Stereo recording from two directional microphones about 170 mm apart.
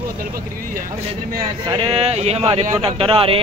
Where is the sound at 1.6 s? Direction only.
30° right (ahead or behind).